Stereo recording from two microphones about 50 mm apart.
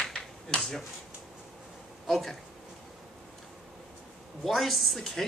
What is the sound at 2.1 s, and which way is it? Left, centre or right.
Speech, centre.